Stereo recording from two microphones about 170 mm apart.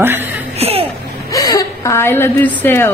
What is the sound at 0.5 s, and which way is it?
Laughter, 35° right (ahead or behind).